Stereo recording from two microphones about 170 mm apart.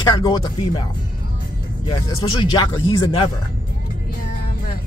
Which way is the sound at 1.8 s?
30° left (ahead or behind).